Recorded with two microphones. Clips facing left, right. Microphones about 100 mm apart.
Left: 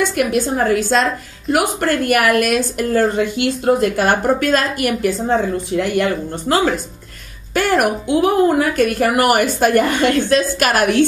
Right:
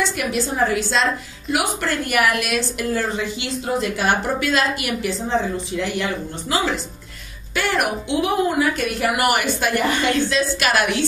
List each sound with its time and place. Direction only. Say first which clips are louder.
0.0 s a woman's voice: left 5 dB; 50° left (ahead or behind)